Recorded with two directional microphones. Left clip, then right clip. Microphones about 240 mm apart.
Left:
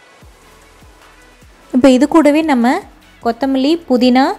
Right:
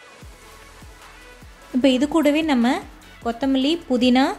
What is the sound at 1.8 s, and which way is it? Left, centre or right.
Speech, left.